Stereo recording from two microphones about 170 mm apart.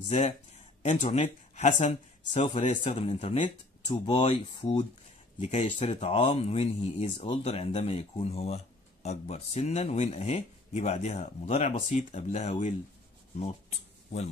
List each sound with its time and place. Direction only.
0.8 s speech: 45° left (ahead or behind)